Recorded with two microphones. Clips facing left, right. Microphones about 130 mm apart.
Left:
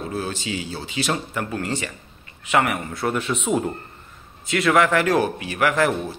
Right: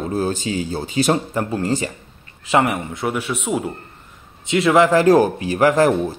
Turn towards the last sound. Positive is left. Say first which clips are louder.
# right 6 dB
turn(degrees=-35)  # may be behind; listen again after turning